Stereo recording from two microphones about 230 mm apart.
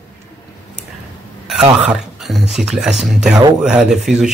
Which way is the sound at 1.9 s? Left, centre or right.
Centre.